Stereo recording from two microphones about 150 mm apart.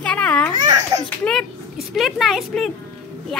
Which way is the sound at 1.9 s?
Centre (ahead or behind).